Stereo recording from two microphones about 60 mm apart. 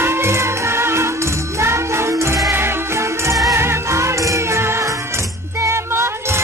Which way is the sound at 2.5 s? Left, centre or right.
Right.